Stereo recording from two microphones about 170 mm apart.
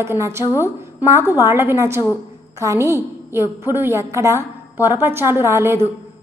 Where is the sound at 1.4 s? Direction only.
15° right (ahead or behind).